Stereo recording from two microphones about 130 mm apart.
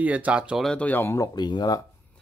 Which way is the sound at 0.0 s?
10° right (ahead or behind).